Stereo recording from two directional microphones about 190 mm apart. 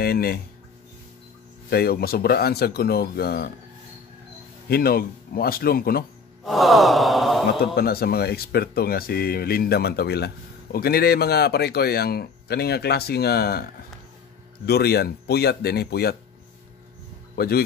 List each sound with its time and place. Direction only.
0.0 s speech: 55° left (ahead or behind)
1.7 s speech: 55° left (ahead or behind)
4.6 s speech: 55° left (ahead or behind)
6.4 s gasp: centre (ahead or behind)
7.6 s speech: 55° left (ahead or behind)
14.7 s speech: 55° left (ahead or behind)
17.4 s speech: 55° left (ahead or behind)